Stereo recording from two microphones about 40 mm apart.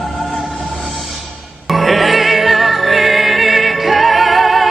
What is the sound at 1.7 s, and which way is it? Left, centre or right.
Music, centre.